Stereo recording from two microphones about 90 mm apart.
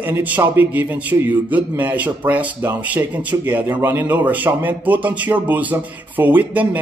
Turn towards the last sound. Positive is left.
turn(degrees=-20)  # may be behind; listen again after turning